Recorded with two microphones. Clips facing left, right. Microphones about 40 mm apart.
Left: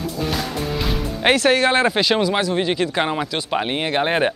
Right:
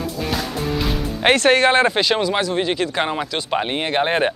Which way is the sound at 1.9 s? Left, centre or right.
Centre.